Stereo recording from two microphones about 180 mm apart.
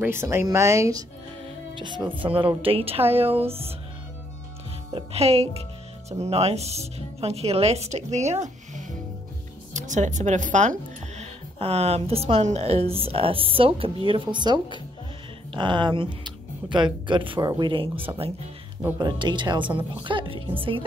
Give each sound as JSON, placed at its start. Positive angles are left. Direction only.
{"t": 0.0, "sound": "speech", "side_deg": -15}
{"t": 2.3, "sound": "speech", "side_deg": -30}
{"t": 4.9, "sound": "speech", "side_deg": -35}